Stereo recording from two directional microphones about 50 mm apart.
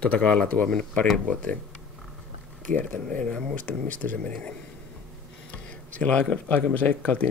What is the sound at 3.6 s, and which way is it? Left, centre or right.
Speech, left.